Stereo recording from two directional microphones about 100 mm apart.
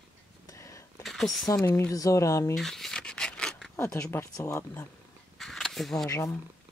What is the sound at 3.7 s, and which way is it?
Speech, 25° left (ahead or behind).